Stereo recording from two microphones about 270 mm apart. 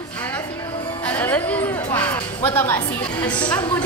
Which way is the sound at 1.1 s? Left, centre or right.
Centre.